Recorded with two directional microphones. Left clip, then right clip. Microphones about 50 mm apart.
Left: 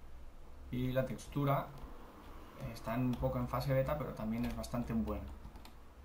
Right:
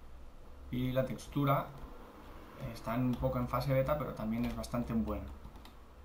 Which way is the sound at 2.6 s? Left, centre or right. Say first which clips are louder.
Right 2 dB; left.